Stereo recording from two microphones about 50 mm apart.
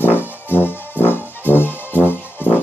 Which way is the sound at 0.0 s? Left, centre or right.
Left.